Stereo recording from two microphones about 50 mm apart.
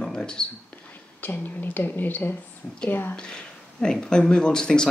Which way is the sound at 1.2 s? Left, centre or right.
Left.